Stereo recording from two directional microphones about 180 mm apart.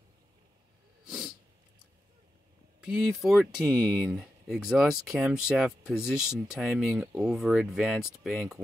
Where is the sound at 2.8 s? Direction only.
Centre (ahead or behind).